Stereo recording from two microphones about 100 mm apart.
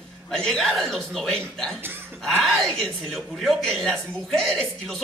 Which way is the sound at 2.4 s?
Centre (ahead or behind).